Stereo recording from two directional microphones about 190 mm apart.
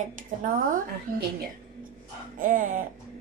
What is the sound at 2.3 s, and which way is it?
Speech, 45° right (ahead or behind).